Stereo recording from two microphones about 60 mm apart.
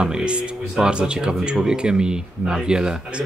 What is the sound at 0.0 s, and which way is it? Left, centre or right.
Speech, centre.